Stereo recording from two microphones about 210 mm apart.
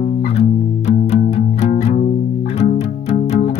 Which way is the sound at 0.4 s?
30° left (ahead or behind).